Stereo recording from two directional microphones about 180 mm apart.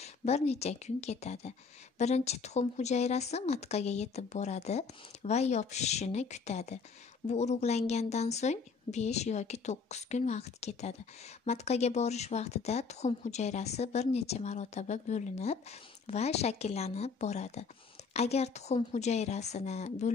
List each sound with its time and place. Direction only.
0.0 s a woman's voice: 35° left (ahead or behind)